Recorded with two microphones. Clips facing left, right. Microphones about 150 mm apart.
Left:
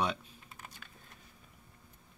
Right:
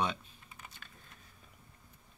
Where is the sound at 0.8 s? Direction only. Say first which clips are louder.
Even; 5° left (ahead or behind).